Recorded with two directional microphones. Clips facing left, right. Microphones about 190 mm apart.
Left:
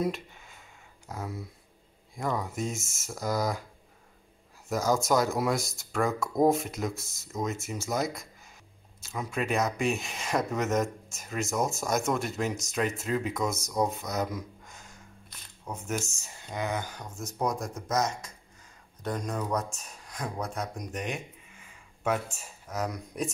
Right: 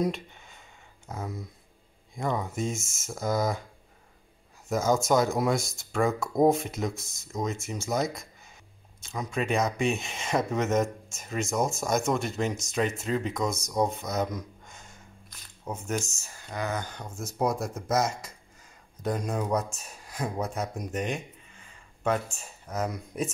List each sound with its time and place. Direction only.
0.0 s a sound: 5° left (ahead or behind)
2.1 s speech: centre (ahead or behind)
4.6 s speech: centre (ahead or behind)
16.2 s speech: 20° left (ahead or behind)
17.4 s speech: 5° right (ahead or behind)